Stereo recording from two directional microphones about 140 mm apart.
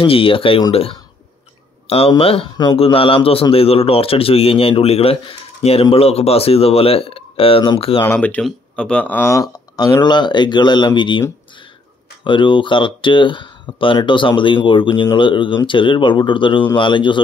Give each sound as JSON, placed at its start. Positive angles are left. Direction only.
{"t": 0.0, "sound": "a man's voice", "side_deg": 40}
{"t": 2.5, "sound": "speech", "side_deg": 30}
{"t": 2.8, "sound": "a man's voice", "side_deg": 40}
{"t": 8.0, "sound": "speech", "side_deg": 15}
{"t": 12.3, "sound": "speech", "side_deg": 35}